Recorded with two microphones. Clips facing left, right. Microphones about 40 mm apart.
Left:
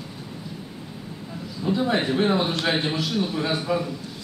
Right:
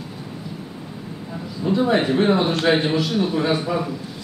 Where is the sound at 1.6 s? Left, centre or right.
Centre.